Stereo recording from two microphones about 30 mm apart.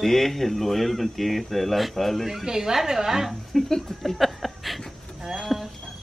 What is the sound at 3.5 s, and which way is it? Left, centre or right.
Speech, centre.